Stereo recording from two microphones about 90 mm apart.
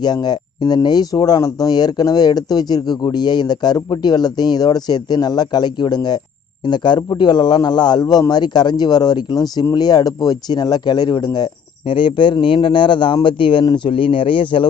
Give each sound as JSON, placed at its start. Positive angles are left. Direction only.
{"t": 0.0, "sound": "speech", "side_deg": 50}
{"t": 11.9, "sound": "speech", "side_deg": 65}